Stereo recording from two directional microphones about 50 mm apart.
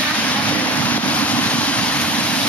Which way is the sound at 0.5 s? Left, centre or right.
Left.